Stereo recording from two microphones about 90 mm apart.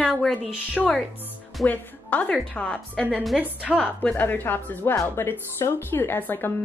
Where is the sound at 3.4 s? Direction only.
10° right (ahead or behind).